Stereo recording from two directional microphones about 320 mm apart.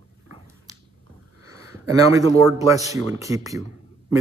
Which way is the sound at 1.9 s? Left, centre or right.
Centre.